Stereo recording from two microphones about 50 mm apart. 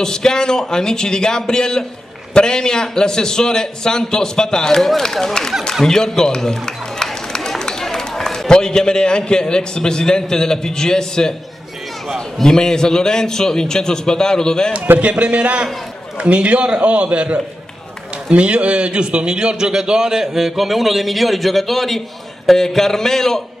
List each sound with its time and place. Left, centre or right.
0.0 s a man's voice: centre
15.0 s a man's voice: right; by 23.4 s centre